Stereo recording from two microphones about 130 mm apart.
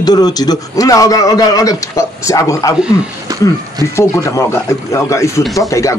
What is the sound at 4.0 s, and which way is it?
Speech, 20° left (ahead or behind).